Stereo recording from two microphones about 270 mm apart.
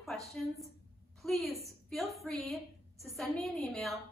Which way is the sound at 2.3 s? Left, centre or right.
Centre.